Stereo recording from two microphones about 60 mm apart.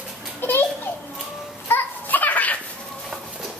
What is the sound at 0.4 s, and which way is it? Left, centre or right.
Children playing, left.